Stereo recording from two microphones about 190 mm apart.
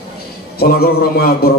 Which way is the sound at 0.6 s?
55° left (ahead or behind).